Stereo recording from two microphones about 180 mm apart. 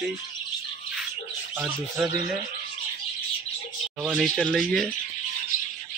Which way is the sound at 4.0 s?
5° right (ahead or behind).